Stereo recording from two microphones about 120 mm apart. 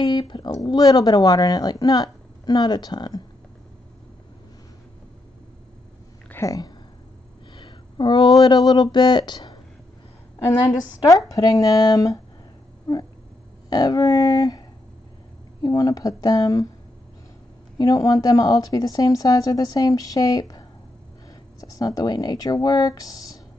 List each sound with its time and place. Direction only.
0.0 s speech: 40° left (ahead or behind)
6.3 s speech: 25° left (ahead or behind)
7.5 s a sound: 40° left (ahead or behind)
10.4 s speech: 30° left (ahead or behind)
12.9 s a sound: 35° left (ahead or behind)
13.7 s speech: 30° left (ahead or behind)
15.6 s speech: 30° left (ahead or behind)
17.7 s speech: 30° left (ahead or behind)